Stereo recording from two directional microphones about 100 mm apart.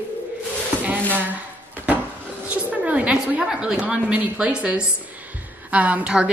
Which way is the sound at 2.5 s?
15° right (ahead or behind).